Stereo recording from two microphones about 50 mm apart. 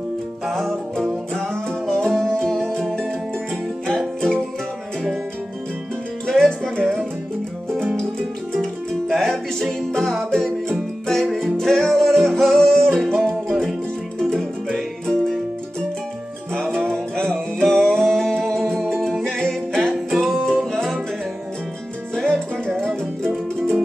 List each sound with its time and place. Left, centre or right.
0.5 s music: centre
6.2 s music: centre
12.5 s music: centre
13.5 s music: centre
17.1 s music: centre
19.9 s music: centre
22.1 s music: centre